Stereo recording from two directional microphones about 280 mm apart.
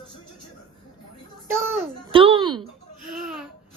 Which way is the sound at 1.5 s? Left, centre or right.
Centre.